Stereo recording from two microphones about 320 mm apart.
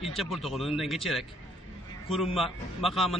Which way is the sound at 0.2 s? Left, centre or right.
Centre.